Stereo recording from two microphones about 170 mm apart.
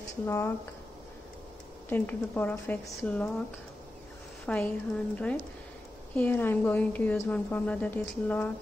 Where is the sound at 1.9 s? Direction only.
10° left (ahead or behind).